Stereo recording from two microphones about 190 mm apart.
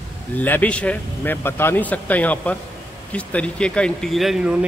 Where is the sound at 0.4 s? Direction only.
10° left (ahead or behind).